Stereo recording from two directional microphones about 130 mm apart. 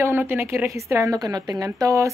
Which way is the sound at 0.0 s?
15° right (ahead or behind).